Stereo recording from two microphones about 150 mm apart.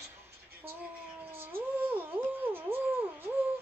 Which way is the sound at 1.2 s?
15° right (ahead or behind).